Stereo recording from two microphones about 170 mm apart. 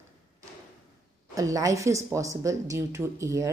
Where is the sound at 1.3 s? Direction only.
20° right (ahead or behind).